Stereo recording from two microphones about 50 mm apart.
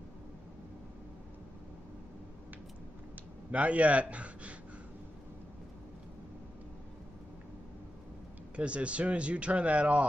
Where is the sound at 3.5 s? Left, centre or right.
Right.